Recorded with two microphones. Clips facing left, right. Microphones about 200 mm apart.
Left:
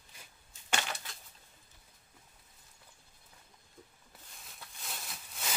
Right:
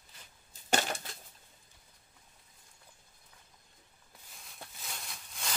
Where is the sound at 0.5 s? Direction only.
40° right (ahead or behind).